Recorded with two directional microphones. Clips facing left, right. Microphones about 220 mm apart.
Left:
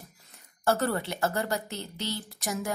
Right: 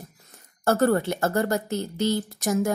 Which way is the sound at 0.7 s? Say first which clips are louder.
Right 6 dB; 45° right (ahead or behind).